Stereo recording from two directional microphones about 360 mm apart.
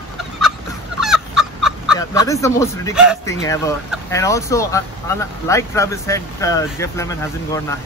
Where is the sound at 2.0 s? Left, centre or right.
Centre.